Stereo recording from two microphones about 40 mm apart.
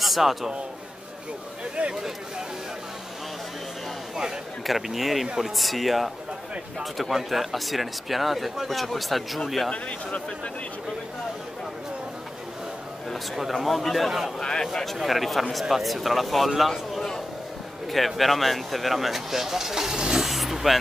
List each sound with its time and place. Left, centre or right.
0.0 s a man's voice: centre
1.8 s speech: right
4.6 s speech: centre
9.7 s speech: left
13.4 s speech: centre
14.4 s speech: centre
14.7 s speech: centre
20.2 s a sound: centre